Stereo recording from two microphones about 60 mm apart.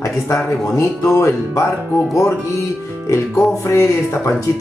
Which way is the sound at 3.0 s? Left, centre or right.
Left.